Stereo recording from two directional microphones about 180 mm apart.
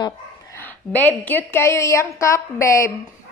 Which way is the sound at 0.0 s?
15° left (ahead or behind).